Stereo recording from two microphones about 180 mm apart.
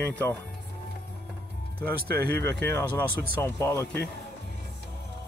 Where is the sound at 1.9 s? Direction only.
60° right (ahead or behind).